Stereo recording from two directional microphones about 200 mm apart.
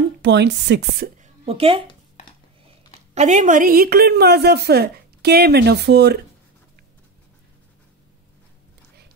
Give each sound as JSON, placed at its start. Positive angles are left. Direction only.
{"t": 0.2, "sound": "a woman's voice", "side_deg": -60}
{"t": 1.4, "sound": "speech", "side_deg": -30}
{"t": 3.2, "sound": "a woman's voice", "side_deg": -40}